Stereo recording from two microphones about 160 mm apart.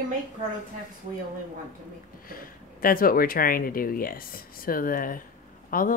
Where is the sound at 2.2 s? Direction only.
65° left (ahead or behind).